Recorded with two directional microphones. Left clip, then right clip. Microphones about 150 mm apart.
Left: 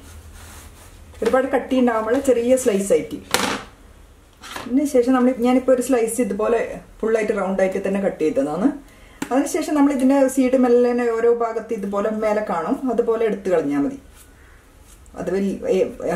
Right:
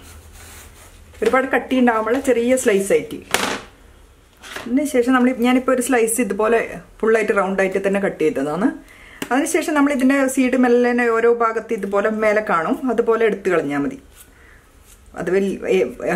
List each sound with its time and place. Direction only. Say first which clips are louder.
1.3 s speech: even; 20° right (ahead or behind)
4.7 s speech: even; 25° right (ahead or behind)
15.1 s speech: right 4 dB; 30° right (ahead or behind)